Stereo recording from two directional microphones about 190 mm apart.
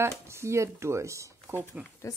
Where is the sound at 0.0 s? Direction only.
15° right (ahead or behind).